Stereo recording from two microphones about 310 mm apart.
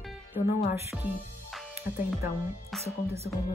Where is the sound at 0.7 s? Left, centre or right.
Centre.